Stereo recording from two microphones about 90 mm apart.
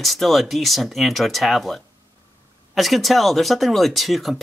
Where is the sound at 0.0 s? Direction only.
Centre (ahead or behind).